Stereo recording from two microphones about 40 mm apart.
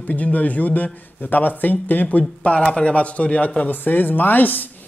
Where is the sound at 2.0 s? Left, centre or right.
Left.